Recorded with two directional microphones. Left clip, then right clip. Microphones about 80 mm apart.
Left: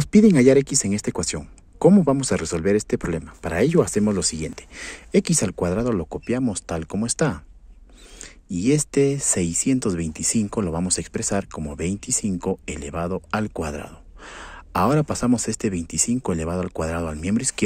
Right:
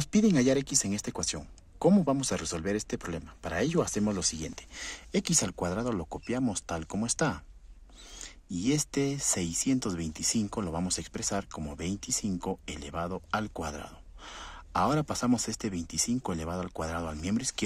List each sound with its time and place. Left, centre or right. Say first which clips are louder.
0.0 s speech: left 11 dB; left